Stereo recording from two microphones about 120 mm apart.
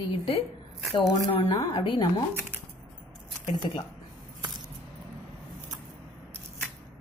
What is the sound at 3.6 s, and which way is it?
Speech, 50° left (ahead or behind).